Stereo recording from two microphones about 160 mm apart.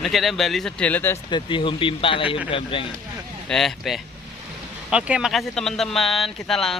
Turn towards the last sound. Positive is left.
turn(degrees=0)  # may be behind; listen again after turning